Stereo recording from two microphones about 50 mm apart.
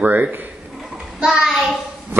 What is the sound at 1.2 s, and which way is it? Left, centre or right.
Child singing, centre.